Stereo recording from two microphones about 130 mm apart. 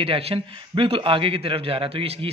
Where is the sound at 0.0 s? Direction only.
50° right (ahead or behind).